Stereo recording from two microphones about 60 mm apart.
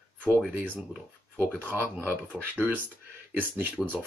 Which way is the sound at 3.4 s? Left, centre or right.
Right.